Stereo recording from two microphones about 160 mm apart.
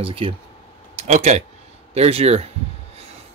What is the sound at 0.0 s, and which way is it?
Speech, 35° right (ahead or behind).